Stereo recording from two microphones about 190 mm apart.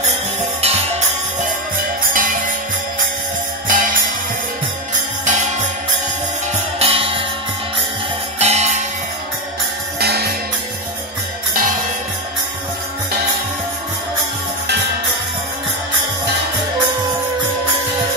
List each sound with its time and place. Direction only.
0.0 s music: 35° right (ahead or behind)
3.6 s music: 45° right (ahead or behind)
5.2 s music: 40° right (ahead or behind)
6.8 s music: 30° right (ahead or behind)
8.4 s music: 35° right (ahead or behind)
9.9 s music: 55° right (ahead or behind)